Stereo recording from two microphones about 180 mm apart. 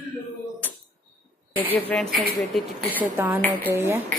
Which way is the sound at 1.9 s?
5° left (ahead or behind).